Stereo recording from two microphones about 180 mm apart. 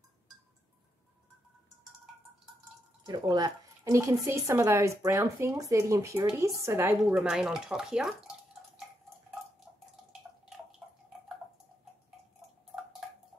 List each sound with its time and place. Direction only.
3.1 s speech: 20° right (ahead or behind)
7.2 s speech: 5° right (ahead or behind)
10.8 s drip: 5° right (ahead or behind)